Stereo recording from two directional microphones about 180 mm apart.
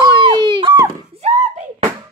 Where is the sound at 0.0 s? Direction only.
25° right (ahead or behind).